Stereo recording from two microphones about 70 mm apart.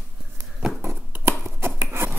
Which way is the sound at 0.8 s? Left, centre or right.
Right.